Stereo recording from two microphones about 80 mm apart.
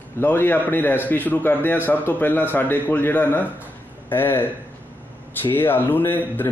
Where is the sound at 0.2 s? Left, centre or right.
Left.